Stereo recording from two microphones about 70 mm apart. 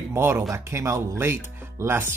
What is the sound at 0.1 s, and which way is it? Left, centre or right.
Speech, right.